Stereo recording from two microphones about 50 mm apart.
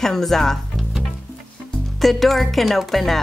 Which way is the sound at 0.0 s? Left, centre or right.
Centre.